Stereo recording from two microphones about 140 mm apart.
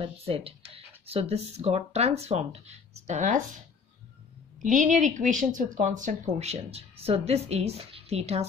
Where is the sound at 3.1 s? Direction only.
65° right (ahead or behind).